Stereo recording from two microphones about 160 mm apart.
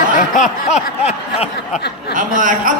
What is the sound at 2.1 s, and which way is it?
Speech, 55° right (ahead or behind).